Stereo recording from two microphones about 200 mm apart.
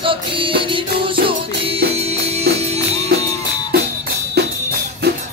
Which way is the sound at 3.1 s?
50° right (ahead or behind).